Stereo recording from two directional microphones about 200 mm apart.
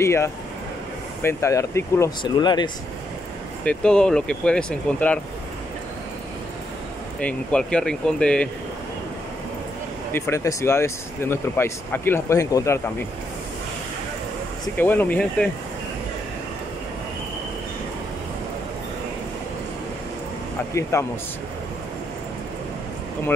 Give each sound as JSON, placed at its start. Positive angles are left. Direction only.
{"t": 0.0, "sound": "speech", "side_deg": 15}
{"t": 3.6, "sound": "speech", "side_deg": 5}
{"t": 7.2, "sound": "speech", "side_deg": 5}
{"t": 10.1, "sound": "speech", "side_deg": 15}
{"t": 14.8, "sound": "speech", "side_deg": 10}
{"t": 20.9, "sound": "speech", "side_deg": 15}